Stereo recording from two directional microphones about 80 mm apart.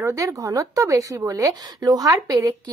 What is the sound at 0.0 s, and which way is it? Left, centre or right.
Speech, right.